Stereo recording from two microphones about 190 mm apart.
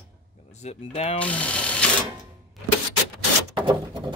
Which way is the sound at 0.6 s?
30° left (ahead or behind).